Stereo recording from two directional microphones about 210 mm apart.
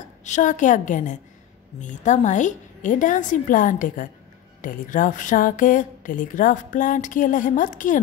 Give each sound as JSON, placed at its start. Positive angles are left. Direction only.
{"t": 0.2, "sound": "a woman's voice", "side_deg": 35}